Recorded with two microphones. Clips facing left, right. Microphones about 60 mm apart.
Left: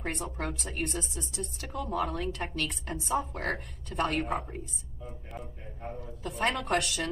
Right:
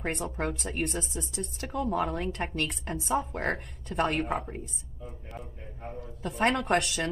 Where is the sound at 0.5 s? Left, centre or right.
Centre.